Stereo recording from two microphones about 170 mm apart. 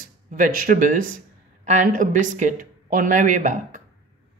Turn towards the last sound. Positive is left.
turn(degrees=-50)  # may be behind; listen again after turning